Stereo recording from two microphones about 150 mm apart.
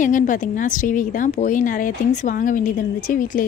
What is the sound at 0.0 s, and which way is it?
A woman's voice, 60° left (ahead or behind).